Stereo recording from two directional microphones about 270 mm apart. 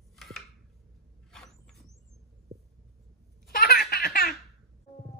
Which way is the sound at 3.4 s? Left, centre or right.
Left.